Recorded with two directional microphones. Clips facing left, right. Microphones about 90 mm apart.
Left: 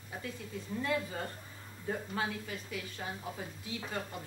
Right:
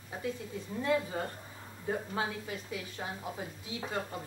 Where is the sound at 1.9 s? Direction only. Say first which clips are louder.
Right 2 dB; 25° right (ahead or behind).